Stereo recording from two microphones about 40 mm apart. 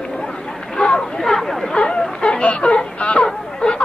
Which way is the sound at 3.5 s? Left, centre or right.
Left.